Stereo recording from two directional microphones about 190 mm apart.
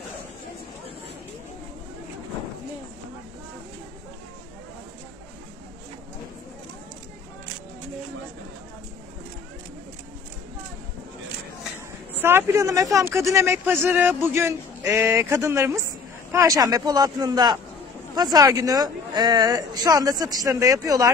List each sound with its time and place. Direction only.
12.2 s speech: 10° right (ahead or behind)